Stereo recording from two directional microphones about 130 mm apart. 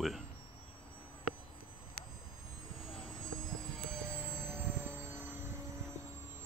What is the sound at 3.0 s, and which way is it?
Vehicle, 5° left (ahead or behind).